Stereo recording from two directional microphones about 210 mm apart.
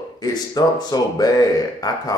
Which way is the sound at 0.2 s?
20° left (ahead or behind).